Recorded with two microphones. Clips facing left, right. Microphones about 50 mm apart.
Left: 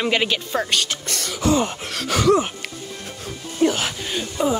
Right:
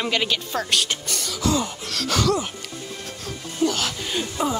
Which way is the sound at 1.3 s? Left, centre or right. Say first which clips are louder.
Left 4 dB; left.